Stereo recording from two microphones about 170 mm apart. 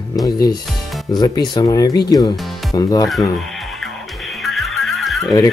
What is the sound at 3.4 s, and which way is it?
Music, centre (ahead or behind).